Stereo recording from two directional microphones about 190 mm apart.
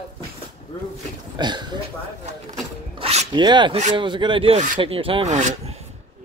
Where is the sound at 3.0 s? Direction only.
30° right (ahead or behind).